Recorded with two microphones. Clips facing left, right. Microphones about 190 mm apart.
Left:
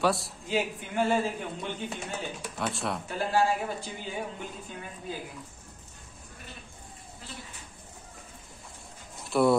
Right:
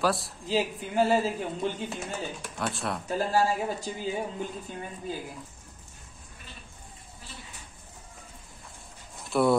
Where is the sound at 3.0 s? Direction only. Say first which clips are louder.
Right 1 dB; 40° right (ahead or behind).